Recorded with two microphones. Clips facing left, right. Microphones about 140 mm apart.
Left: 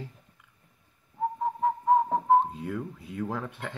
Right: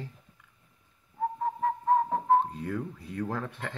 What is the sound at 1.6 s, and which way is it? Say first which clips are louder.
Whistling: left 2 dB; 15° left (ahead or behind).